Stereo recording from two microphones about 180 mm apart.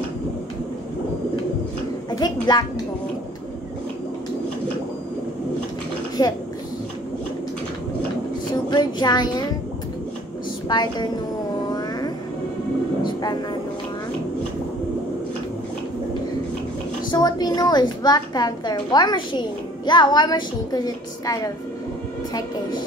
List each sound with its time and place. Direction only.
2.0 s a sound: 20° left (ahead or behind)
6.2 s a woman's voice: 20° left (ahead or behind)
8.6 s child singing: 25° left (ahead or behind)
10.7 s a woman's voice: 25° left (ahead or behind)
11.6 s music: 20° left (ahead or behind)
13.0 s vehicle: 25° left (ahead or behind)
17.1 s a woman's voice: 20° left (ahead or behind)